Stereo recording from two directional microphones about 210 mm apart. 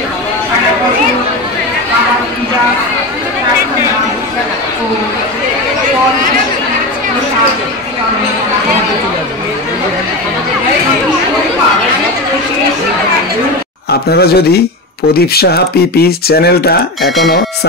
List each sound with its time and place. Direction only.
14.0 s speech: 50° left (ahead or behind)